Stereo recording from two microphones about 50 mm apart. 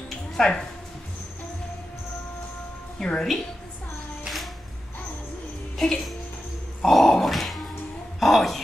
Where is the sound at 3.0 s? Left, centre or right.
Centre.